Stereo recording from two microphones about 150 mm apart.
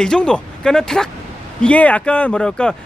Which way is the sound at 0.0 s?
5° left (ahead or behind).